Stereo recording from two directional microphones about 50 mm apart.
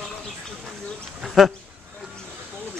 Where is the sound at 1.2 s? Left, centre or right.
Centre.